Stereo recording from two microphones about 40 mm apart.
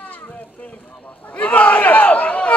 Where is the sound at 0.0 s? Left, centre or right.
Left.